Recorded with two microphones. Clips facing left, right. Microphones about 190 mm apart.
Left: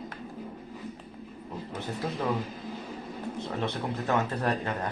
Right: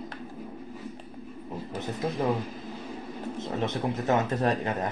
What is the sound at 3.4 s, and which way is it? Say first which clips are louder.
Speech: right 4 dB; 20° right (ahead or behind).